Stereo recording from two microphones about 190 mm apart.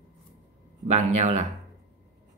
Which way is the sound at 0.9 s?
35° right (ahead or behind).